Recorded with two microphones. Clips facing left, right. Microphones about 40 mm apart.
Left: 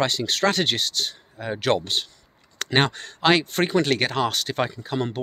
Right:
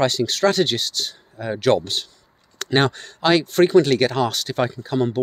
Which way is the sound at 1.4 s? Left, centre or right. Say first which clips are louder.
Right 4 dB; left.